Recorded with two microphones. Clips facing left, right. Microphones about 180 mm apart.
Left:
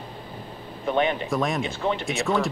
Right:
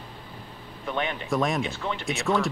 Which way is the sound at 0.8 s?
25° left (ahead or behind).